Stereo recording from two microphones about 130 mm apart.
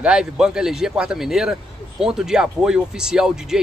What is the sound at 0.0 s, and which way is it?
A man's voice, 5° right (ahead or behind).